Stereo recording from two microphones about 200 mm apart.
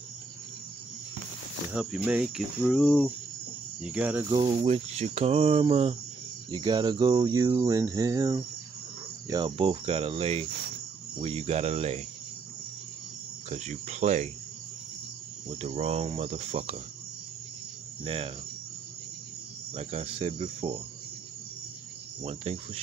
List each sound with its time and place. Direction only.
1.7 s cricket: 5° right (ahead or behind)
3.8 s speech: 5° right (ahead or behind)
4.3 s cricket: 25° right (ahead or behind)
13.5 s cricket: 35° right (ahead or behind)
15.6 s cricket: 30° right (ahead or behind)
18.0 s cricket: 30° right (ahead or behind)
19.7 s cricket: 30° right (ahead or behind)
22.2 s cricket: 30° right (ahead or behind)